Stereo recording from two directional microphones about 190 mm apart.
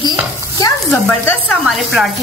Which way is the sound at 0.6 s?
10° left (ahead or behind).